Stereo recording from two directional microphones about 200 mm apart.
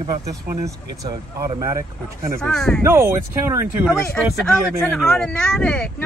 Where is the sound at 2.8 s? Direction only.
10° right (ahead or behind).